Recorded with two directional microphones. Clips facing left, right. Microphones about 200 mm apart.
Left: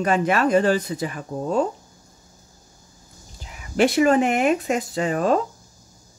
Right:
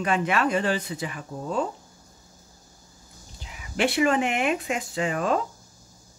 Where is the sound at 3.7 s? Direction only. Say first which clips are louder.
Left 5 dB; 40° left (ahead or behind).